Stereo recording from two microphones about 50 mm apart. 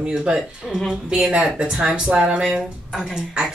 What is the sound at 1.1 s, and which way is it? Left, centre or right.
Speech, right.